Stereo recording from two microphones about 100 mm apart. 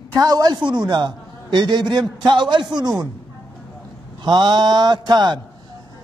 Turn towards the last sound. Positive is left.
turn(degrees=-45)  # may be behind; listen again after turning